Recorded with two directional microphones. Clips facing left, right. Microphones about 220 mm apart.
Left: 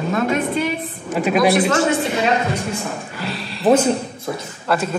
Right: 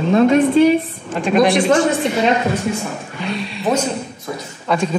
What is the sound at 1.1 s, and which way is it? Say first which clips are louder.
Speech: right 1 dB; 5° left (ahead or behind).